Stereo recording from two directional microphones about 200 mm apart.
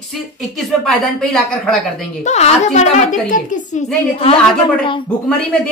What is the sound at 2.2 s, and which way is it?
A woman's voice, 35° left (ahead or behind).